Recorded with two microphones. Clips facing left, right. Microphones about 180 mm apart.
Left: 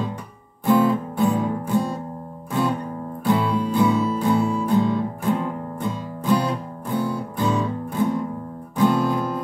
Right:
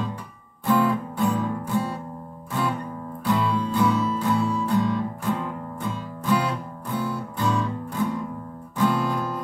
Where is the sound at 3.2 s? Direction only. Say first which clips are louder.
Left 3 dB; 15° left (ahead or behind).